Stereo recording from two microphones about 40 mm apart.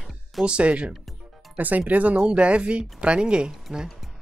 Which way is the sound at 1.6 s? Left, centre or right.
Right.